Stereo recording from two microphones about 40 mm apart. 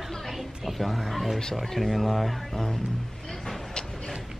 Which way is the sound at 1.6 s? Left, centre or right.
Centre.